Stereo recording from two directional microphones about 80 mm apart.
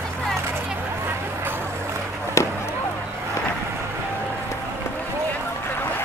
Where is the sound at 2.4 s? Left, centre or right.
Left.